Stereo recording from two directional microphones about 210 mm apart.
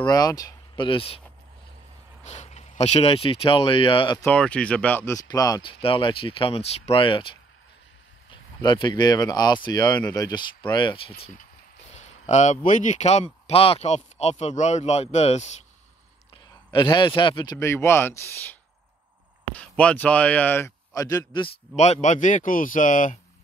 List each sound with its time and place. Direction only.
0.0 s speech: 15° left (ahead or behind)
2.2 s speech: 30° left (ahead or behind)
4.3 s speech: 5° left (ahead or behind); by 7.2 s 25° left (ahead or behind)
8.3 s speech: 20° left (ahead or behind)
16.8 s speech: 20° left (ahead or behind); by 23.1 s 40° left (ahead or behind)